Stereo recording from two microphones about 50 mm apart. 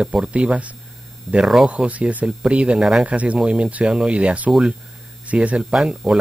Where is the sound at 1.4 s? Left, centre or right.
Centre.